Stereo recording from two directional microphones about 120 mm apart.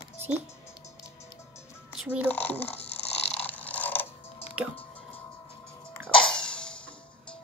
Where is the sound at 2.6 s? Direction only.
60° left (ahead or behind).